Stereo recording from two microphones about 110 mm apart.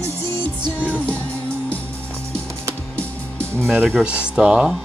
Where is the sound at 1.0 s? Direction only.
15° left (ahead or behind).